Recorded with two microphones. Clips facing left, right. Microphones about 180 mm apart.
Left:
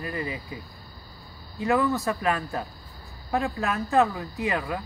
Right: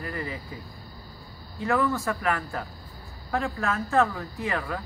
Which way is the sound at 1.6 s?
20° left (ahead or behind).